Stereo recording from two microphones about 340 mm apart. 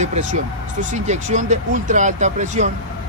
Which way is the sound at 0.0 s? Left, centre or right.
Right.